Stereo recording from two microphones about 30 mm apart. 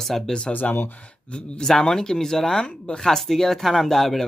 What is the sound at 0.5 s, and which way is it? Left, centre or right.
Speech, left.